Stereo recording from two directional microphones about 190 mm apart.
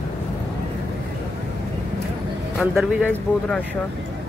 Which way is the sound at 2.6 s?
Centre (ahead or behind).